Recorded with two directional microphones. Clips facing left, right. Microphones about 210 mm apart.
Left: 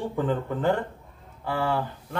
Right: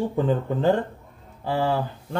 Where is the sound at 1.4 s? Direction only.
25° right (ahead or behind).